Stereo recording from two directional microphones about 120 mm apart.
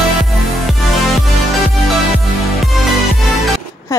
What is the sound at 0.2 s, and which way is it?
Music, centre (ahead or behind).